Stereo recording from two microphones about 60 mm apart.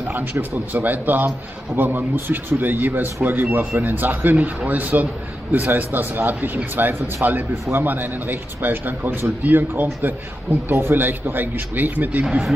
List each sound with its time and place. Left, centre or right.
0.1 s a man's voice: right
12.3 s speech: centre